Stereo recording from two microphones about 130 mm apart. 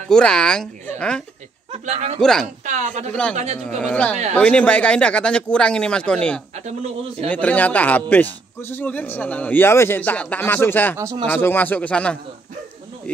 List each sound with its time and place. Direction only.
0.1 s speech: 5° left (ahead or behind)
1.7 s speech: 55° right (ahead or behind)
2.1 s speech: 5° left (ahead or behind)
2.6 s a woman's voice: 65° right (ahead or behind)
3.8 s speech: 10° left (ahead or behind)